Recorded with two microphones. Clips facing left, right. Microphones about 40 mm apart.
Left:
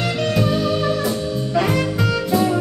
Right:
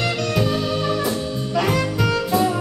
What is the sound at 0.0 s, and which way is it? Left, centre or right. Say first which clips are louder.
Music: left 1 dB; centre.